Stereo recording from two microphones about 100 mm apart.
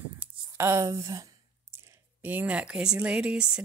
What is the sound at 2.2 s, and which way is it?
Speech, 15° right (ahead or behind).